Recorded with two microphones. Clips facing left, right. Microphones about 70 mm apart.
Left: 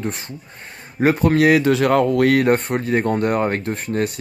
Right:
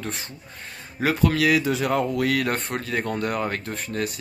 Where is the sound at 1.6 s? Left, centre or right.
Left.